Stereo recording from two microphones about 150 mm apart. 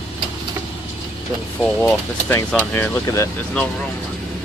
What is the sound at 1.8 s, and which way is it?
Speech, 15° left (ahead or behind).